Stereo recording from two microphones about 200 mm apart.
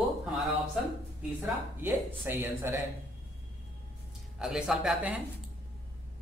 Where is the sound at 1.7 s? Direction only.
10° right (ahead or behind).